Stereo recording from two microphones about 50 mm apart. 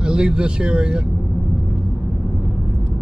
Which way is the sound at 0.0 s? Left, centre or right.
Centre.